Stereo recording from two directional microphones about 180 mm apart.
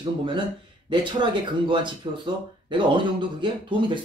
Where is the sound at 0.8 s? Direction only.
25° right (ahead or behind).